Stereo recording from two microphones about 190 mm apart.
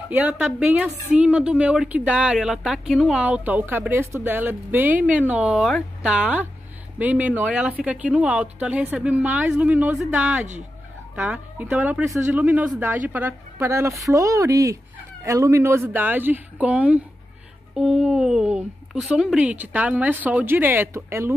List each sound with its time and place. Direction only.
0.1 s speech: 10° right (ahead or behind)